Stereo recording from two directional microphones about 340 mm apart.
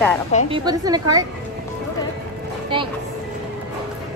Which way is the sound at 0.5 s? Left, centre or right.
Centre.